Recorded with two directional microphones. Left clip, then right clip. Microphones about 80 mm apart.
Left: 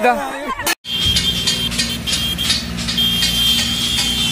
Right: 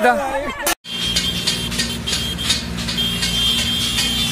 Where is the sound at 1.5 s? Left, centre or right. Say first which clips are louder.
Left 3 dB; right.